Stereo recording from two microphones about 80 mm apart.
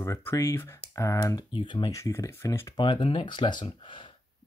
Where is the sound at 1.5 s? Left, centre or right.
Left.